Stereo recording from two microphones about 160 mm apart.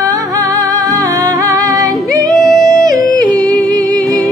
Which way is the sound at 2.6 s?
25° right (ahead or behind).